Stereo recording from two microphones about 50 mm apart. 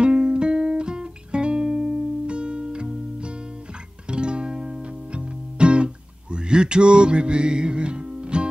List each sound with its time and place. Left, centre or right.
0.0 s music: centre